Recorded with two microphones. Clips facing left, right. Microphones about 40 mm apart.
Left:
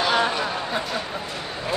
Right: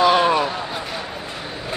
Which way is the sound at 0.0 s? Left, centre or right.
Right.